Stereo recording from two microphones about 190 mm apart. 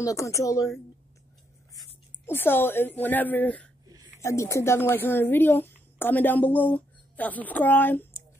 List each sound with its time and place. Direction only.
0.0 s a woman's voice: 15° left (ahead or behind)
2.2 s a woman's voice: 10° left (ahead or behind)
3.8 s a sound: 20° right (ahead or behind)
4.2 s a woman's voice: 15° left (ahead or behind)